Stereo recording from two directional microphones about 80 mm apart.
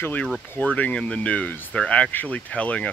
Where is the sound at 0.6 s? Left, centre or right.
Centre.